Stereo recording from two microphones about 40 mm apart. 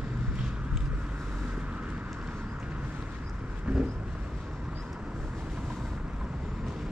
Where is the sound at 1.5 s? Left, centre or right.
Right.